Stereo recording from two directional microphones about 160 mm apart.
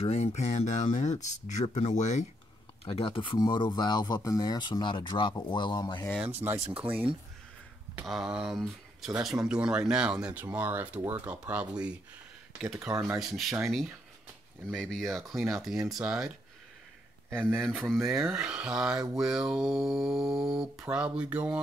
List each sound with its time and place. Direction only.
0.0 s speech: 45° left (ahead or behind)
2.8 s speech: 35° left (ahead or behind)
6.4 s speech: 20° right (ahead or behind)
13.1 s speech: centre (ahead or behind)
14.7 s speech: 5° left (ahead or behind)
17.5 s speech: 5° left (ahead or behind)